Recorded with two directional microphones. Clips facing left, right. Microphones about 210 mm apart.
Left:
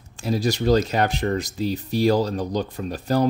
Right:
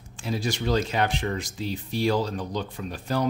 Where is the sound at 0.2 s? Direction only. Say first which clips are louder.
Left 6 dB; 40° left (ahead or behind).